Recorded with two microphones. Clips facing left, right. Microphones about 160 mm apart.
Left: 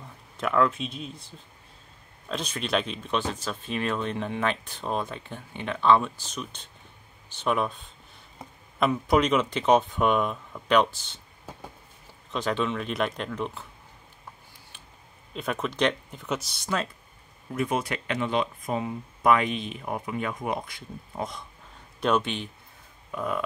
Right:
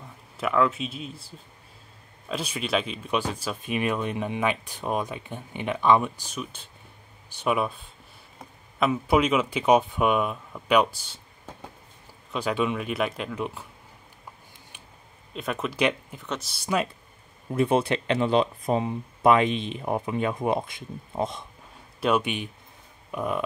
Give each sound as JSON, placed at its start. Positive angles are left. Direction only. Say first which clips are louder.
{"t": 0.4, "sound": "speech", "louder": "even", "side_deg": 0}
{"t": 2.2, "sound": "speech", "louder": "right 1 dB", "side_deg": -5}
{"t": 8.7, "sound": "speech", "louder": "right 1 dB", "side_deg": -5}
{"t": 12.3, "sound": "speech", "louder": "right 1 dB", "side_deg": -10}
{"t": 15.3, "sound": "speech", "louder": "even", "side_deg": 0}
{"t": 16.6, "sound": "speech", "louder": "right 5 dB", "side_deg": -15}
{"t": 17.6, "sound": "speech", "louder": "right 5 dB", "side_deg": -30}
{"t": 22.0, "sound": "speech", "louder": "right 1 dB", "side_deg": -10}